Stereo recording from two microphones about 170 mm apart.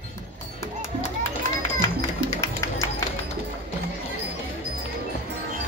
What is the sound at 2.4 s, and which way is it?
Music, 20° left (ahead or behind).